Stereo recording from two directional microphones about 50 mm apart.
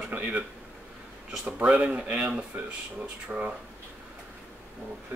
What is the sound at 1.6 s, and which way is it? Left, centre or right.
Speech, right.